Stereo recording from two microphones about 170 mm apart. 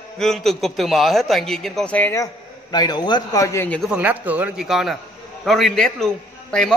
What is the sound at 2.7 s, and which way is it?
A man's voice, 25° left (ahead or behind).